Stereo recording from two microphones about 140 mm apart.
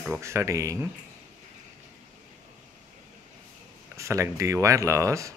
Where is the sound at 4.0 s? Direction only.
20° right (ahead or behind).